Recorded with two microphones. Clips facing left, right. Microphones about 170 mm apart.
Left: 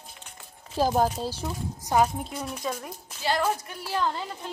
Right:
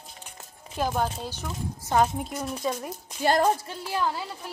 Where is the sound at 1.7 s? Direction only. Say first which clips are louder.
Even; 15° left (ahead or behind).